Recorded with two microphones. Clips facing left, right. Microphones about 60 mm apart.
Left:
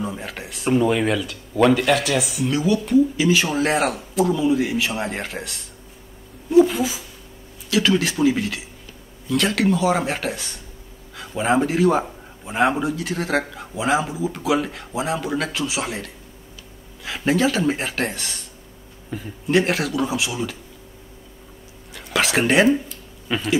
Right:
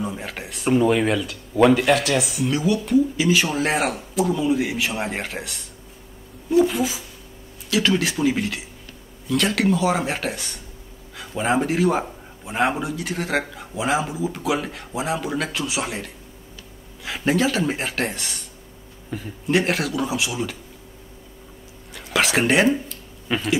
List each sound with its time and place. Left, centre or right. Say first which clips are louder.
0.0 s a sound: even; centre
0.5 s speech: right 1 dB; centre
6.6 s speech: left 4 dB; centre
12.1 s a sound: even; centre
13.6 s speech: left 2 dB; centre
17.0 s speech: left 1 dB; centre
21.9 s a sound: even; centre
22.6 s speech: left 2 dB; centre
23.2 s speech: left 1 dB; centre